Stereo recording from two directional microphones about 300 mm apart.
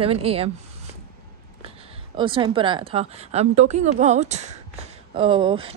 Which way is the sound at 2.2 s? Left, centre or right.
Centre.